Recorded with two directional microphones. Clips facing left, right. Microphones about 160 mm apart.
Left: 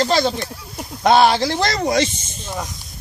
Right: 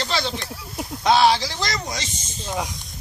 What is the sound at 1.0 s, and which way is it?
Speech, 55° left (ahead or behind).